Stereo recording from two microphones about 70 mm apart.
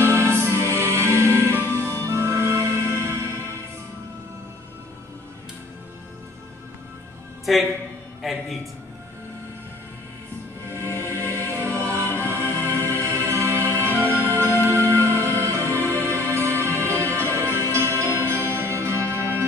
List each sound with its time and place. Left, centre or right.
0.0 s music: right
7.5 s a man's voice: centre
10.7 s music: right